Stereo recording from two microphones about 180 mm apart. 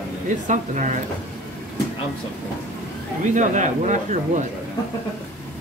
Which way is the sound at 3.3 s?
45° right (ahead or behind).